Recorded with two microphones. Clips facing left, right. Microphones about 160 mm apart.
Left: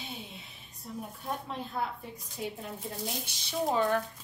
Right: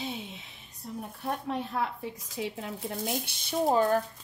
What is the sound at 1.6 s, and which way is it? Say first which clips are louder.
Speech: right 3 dB; 90° right.